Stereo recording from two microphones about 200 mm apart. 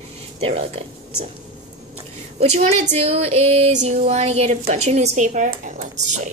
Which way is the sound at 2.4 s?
35° right (ahead or behind).